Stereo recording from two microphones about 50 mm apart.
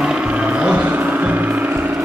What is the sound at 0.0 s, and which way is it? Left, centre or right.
Music, right.